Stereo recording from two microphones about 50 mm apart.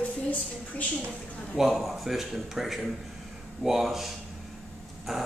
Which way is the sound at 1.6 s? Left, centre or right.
Centre.